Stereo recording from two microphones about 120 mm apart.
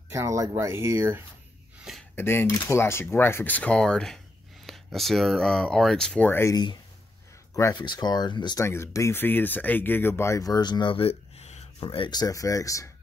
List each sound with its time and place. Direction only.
0.1 s speech: 25° right (ahead or behind)
2.1 s speech: 20° left (ahead or behind)
6.5 s speech: 35° left (ahead or behind)
8.5 s speech: 20° left (ahead or behind)